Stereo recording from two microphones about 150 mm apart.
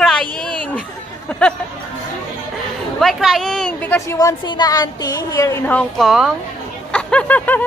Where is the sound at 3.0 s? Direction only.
Centre (ahead or behind).